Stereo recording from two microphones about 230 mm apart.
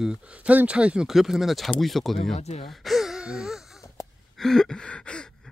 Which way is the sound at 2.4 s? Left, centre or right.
Left.